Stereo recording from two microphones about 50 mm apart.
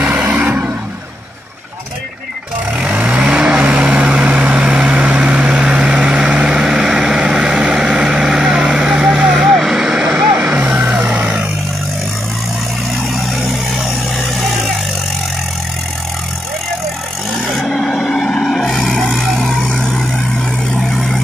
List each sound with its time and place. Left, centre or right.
0.0 s vehicle: right
2.8 s vehicle: right; by 10.1 s centre
10.1 s music: right
11.1 s vehicle: right
13.1 s vehicle: centre
17.5 s vehicle: centre
19.7 s vehicle: centre